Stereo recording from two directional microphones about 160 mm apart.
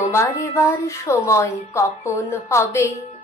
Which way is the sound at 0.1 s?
20° left (ahead or behind).